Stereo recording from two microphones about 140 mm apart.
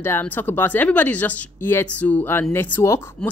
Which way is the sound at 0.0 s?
15° left (ahead or behind).